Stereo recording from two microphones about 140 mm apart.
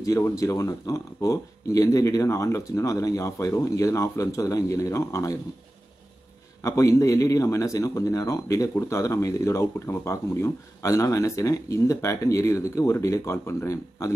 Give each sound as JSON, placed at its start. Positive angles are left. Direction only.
{"t": 0.0, "sound": "a man's voice", "side_deg": 25}
{"t": 6.6, "sound": "a man's voice", "side_deg": 20}